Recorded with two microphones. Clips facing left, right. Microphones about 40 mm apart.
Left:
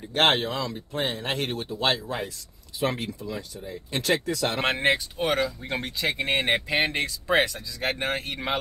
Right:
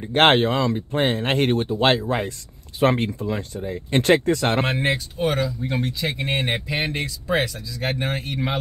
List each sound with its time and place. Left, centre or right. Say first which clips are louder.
0.0 s speech: right 6 dB; right
4.6 s speech: even; centre